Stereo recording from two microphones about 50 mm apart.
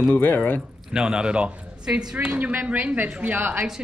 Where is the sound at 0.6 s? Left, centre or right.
Centre.